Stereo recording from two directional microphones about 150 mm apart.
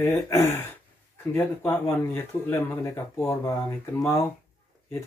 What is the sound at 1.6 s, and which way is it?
Speech, 15° left (ahead or behind).